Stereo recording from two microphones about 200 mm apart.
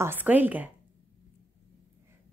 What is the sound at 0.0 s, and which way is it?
Speech, 10° right (ahead or behind).